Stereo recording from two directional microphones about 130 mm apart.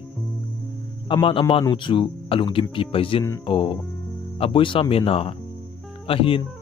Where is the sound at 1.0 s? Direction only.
40° left (ahead or behind).